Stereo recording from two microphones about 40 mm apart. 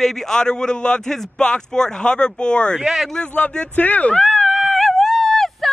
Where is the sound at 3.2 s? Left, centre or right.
Left.